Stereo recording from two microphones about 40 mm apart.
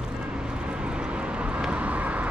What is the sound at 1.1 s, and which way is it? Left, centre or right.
Vehicle, right.